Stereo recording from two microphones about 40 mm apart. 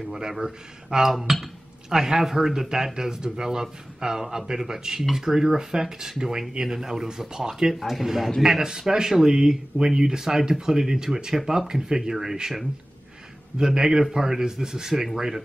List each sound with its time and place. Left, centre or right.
0.1 s speech: centre